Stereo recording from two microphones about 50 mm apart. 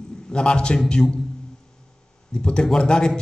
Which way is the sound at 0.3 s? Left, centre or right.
Centre.